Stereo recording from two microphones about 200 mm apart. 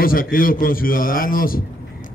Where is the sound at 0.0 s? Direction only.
45° left (ahead or behind).